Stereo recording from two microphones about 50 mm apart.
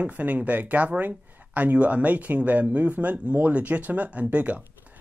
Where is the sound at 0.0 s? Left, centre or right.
Right.